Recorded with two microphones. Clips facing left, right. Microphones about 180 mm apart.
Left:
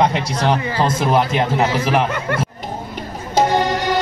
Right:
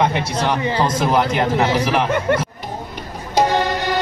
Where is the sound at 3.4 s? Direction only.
15° left (ahead or behind).